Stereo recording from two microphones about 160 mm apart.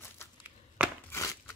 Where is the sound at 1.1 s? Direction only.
15° left (ahead or behind).